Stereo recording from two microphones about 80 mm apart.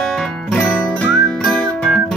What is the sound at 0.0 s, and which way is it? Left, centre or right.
Music, centre.